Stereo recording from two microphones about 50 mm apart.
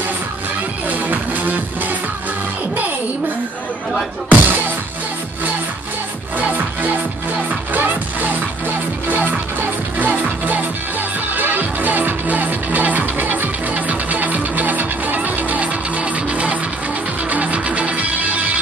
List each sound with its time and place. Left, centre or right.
0.8 s music: right
4.3 s music: right
6.3 s music: right